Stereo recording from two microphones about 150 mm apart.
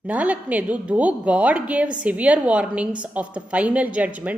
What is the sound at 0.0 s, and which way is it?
A woman's voice, 10° right (ahead or behind).